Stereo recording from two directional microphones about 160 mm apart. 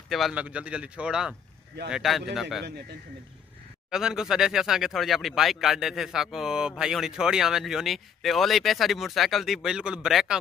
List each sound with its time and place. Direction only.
0.1 s speech: 5° right (ahead or behind)
3.9 s speech: 5° right (ahead or behind)